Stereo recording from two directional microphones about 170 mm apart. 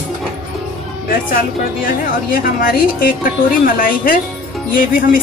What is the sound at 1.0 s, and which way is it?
A woman's voice, 55° left (ahead or behind).